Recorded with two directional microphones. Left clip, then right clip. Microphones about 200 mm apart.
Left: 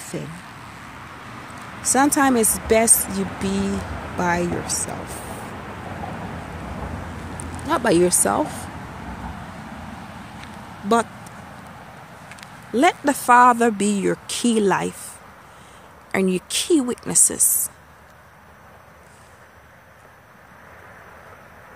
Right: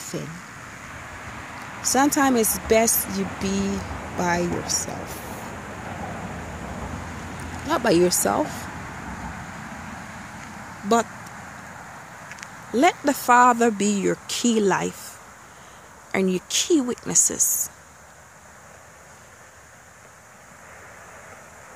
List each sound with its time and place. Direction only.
0.0 s vehicle: 5° right (ahead or behind)
1.8 s speech: centre (ahead or behind)
7.6 s speech: 5° right (ahead or behind)
12.4 s speech: centre (ahead or behind)